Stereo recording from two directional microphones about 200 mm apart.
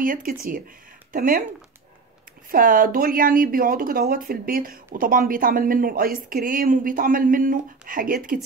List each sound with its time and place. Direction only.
0.0 s speech: 45° right (ahead or behind)
2.5 s speech: 45° right (ahead or behind)